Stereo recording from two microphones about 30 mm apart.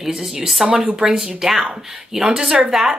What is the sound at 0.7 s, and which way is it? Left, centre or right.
A woman's voice, right.